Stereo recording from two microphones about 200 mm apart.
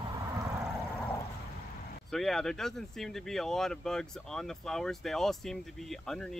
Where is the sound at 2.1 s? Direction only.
Centre (ahead or behind).